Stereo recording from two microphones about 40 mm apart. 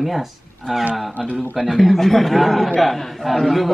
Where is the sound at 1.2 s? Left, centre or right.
Left.